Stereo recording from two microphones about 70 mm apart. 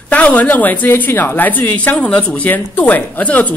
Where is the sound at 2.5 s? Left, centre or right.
Left.